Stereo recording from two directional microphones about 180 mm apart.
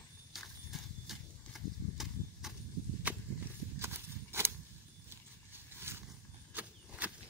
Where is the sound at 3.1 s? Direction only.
10° right (ahead or behind).